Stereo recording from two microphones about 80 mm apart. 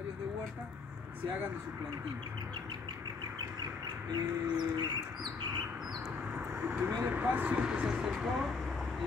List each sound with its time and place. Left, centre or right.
4.1 s bird: right
6.3 s vehicle: right
7.0 s speech: right